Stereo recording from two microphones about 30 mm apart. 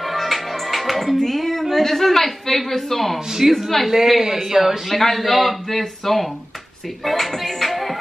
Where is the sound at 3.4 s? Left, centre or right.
Centre.